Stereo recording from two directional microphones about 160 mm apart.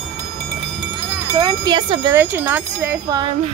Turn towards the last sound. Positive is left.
turn(degrees=-35)  # may be behind; listen again after turning